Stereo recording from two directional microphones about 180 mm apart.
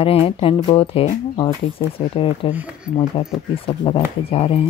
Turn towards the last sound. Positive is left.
turn(degrees=30)  # may be behind; listen again after turning